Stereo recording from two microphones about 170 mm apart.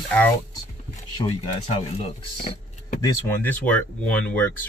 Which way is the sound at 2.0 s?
40° left (ahead or behind).